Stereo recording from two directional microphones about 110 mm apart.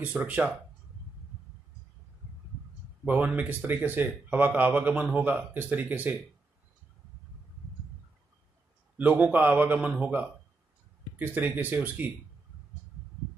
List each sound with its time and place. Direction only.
0.0 s speech: 15° right (ahead or behind)
3.1 s speech: 15° right (ahead or behind)
8.9 s speech: 15° right (ahead or behind)